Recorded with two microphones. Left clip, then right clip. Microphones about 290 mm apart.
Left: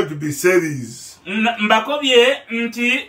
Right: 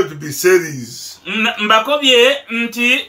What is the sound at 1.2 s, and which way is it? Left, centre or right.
Speech, centre.